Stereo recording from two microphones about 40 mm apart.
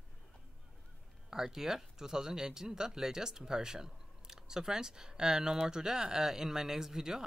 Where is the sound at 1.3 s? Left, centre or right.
Centre.